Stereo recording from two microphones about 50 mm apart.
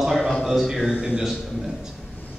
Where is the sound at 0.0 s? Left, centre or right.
Centre.